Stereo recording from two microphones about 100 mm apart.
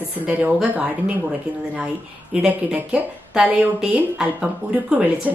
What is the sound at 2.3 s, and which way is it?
Speech, 10° right (ahead or behind).